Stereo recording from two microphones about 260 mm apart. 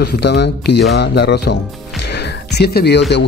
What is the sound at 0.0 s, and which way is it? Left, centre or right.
Speech, left.